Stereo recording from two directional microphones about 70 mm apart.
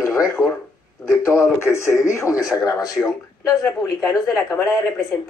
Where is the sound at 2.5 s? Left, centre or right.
Left.